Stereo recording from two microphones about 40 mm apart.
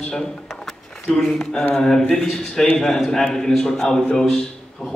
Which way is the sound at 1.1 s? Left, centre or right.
Centre.